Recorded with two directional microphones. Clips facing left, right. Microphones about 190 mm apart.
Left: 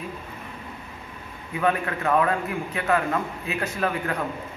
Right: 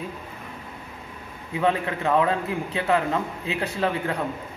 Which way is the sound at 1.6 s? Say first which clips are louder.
Right 1 dB; 25° right (ahead or behind).